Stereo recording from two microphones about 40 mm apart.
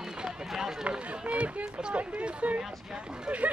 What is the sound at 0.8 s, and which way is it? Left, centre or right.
Speech, right.